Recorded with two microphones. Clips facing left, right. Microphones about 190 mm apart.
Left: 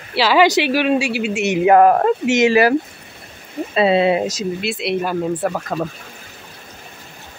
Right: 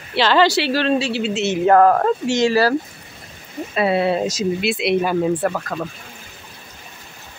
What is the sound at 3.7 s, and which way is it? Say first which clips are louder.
Speech: left 3 dB; 20° left (ahead or behind).